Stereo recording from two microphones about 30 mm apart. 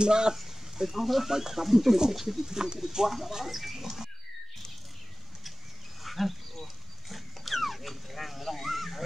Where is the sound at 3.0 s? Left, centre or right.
Centre.